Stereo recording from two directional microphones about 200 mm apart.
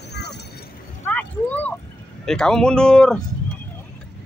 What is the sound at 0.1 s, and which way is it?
Vehicle, 55° left (ahead or behind).